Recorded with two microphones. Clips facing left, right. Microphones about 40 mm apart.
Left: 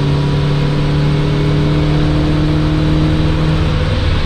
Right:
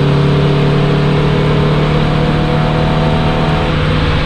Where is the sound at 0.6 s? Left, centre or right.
Right.